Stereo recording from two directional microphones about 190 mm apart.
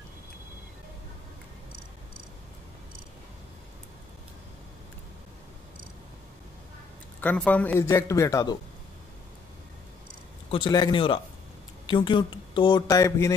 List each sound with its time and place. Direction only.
7.2 s a man's voice: 10° left (ahead or behind)
10.5 s speech: 25° left (ahead or behind)